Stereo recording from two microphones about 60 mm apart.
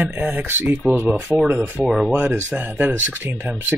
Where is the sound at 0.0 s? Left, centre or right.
Right.